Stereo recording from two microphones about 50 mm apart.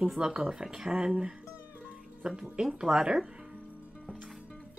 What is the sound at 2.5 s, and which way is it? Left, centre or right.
Speech, centre.